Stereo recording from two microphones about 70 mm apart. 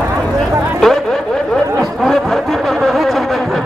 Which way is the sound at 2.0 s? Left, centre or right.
Centre.